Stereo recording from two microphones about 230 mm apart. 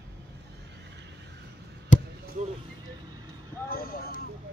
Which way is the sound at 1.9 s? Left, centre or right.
Left.